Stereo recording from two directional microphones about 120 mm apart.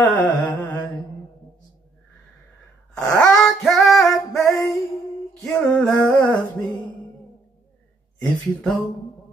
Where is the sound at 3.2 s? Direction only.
5° left (ahead or behind).